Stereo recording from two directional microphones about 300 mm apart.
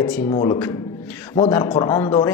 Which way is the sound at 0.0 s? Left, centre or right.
Centre.